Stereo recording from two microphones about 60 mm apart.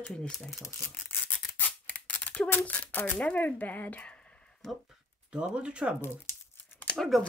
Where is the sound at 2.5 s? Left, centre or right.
Left.